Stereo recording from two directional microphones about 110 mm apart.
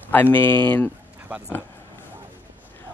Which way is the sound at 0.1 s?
15° left (ahead or behind).